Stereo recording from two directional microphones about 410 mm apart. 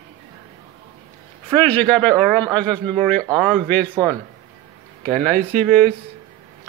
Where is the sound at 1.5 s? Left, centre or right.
Centre.